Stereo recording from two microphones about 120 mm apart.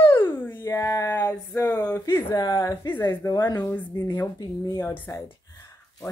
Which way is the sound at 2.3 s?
30° left (ahead or behind).